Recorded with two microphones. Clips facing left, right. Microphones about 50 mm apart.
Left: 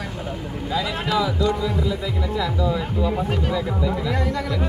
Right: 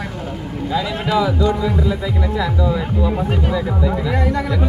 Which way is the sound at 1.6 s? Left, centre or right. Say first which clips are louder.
Right 4 dB; right.